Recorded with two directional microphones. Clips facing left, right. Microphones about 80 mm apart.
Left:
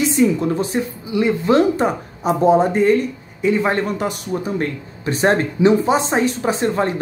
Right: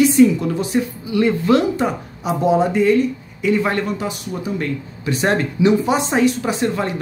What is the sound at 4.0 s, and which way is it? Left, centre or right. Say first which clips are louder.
Speech: left 3 dB; left.